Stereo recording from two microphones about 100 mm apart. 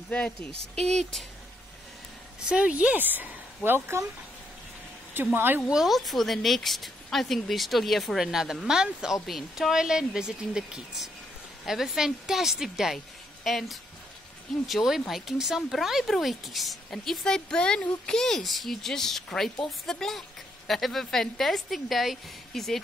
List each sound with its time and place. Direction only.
0.1 s speech: 10° left (ahead or behind)
2.4 s speech: 10° right (ahead or behind)
5.1 s speech: 20° right (ahead or behind)
5.7 s speech: 5° right (ahead or behind)